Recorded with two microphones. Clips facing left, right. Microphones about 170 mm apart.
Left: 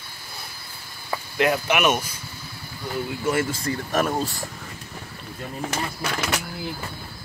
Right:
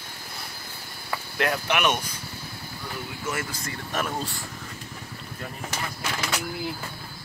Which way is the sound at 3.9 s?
45° left (ahead or behind).